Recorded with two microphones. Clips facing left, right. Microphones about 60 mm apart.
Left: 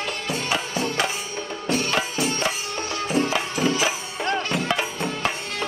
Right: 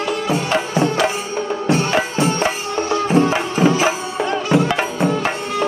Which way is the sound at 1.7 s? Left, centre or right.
Right.